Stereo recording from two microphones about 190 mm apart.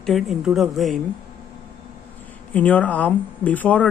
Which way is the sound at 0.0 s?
Centre (ahead or behind).